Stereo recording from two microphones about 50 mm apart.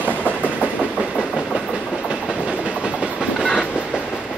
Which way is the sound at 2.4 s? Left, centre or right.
Right.